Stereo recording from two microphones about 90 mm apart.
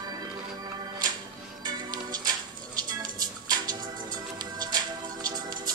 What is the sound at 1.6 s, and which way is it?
Music, 50° right (ahead or behind).